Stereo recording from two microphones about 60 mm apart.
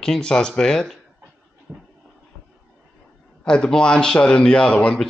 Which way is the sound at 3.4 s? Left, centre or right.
Centre.